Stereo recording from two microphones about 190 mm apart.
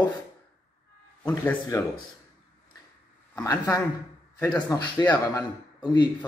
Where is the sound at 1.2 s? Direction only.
10° left (ahead or behind).